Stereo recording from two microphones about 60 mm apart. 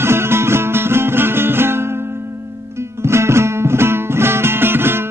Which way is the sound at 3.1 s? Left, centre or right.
Right.